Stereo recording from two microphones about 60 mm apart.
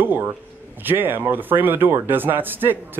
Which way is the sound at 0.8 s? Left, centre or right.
Right.